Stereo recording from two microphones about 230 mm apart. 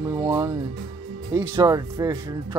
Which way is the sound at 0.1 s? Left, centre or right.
Centre.